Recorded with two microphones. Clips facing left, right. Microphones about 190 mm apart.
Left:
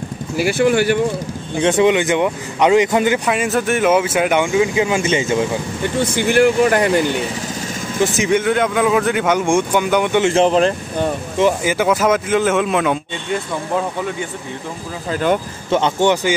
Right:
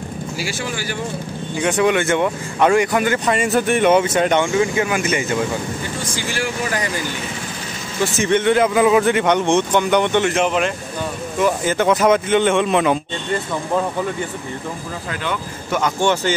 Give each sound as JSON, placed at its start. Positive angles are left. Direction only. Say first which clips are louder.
{"t": 0.4, "sound": "speech", "louder": "left 14 dB", "side_deg": 60}
{"t": 1.6, "sound": "speech", "louder": "left 3 dB", "side_deg": 25}
{"t": 3.3, "sound": "speech", "louder": "even", "side_deg": 0}
{"t": 5.9, "sound": "speech", "louder": "left 14 dB", "side_deg": 60}
{"t": 8.0, "sound": "speech", "louder": "left 1 dB", "side_deg": 15}
{"t": 10.2, "sound": "speech", "louder": "left 5 dB", "side_deg": 30}
{"t": 11.6, "sound": "speech", "louder": "even", "side_deg": 10}
{"t": 15.7, "sound": "speech", "louder": "left 4 dB", "side_deg": 25}